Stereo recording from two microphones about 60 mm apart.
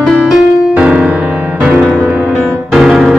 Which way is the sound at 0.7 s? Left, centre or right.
Right.